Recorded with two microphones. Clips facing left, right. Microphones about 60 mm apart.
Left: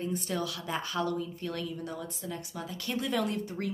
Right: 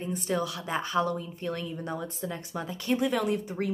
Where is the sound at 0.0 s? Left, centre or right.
Right.